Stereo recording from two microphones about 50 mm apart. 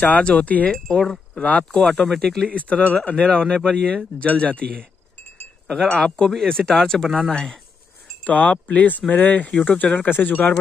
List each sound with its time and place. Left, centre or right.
0.0 s wind chime: left
0.3 s speech: left
0.8 s speech: centre
1.3 s speech: left; by 2.4 s centre
2.4 s speech: left
5.7 s speech: centre
8.3 s wind chime: left
9.5 s speech: left
9.9 s wind chime: left